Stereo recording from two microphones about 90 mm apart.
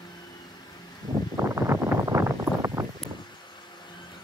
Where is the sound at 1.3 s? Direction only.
30° right (ahead or behind).